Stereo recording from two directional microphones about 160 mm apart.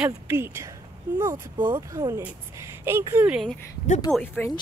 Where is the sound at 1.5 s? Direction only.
30° right (ahead or behind); by 3.4 s 10° right (ahead or behind).